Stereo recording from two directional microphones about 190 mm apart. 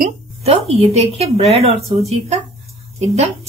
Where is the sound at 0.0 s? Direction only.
35° right (ahead or behind).